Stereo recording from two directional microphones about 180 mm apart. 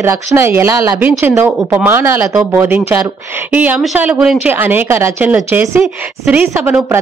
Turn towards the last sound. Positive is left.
turn(degrees=-10)  # may be behind; listen again after turning